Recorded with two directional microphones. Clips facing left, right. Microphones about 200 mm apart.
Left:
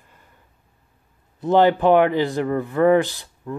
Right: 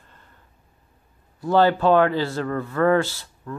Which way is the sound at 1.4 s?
20° left (ahead or behind).